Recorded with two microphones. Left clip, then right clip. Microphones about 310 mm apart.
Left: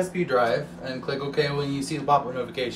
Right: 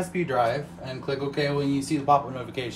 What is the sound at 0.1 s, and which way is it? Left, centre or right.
Speech, right.